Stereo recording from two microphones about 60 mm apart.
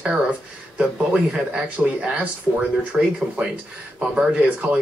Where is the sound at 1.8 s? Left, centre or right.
Centre.